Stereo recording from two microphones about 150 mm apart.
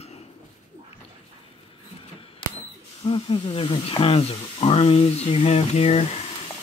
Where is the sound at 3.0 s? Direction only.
35° left (ahead or behind).